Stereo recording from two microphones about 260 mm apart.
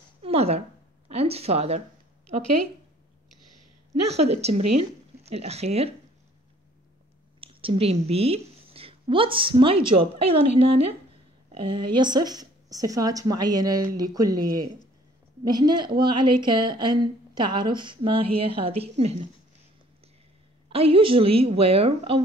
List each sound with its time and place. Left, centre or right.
0.2 s a sound: right
4.1 s a woman's voice: right
7.3 s a woman's voice: right
11.5 s a woman's voice: centre
20.7 s a woman's voice: right